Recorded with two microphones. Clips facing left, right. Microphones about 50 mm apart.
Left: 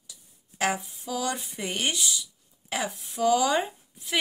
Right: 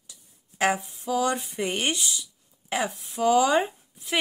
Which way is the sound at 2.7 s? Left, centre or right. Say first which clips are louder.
Right 3 dB; right.